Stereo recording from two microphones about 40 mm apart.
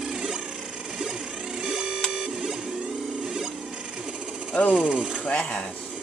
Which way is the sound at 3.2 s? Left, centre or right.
Centre.